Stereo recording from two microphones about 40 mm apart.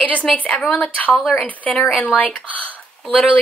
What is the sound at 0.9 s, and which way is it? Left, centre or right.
Speech, left.